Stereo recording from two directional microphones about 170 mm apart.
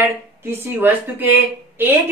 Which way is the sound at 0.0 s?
15° right (ahead or behind).